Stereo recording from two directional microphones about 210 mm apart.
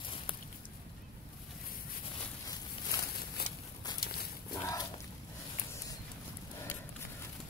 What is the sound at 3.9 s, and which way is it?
Dog, 50° left (ahead or behind).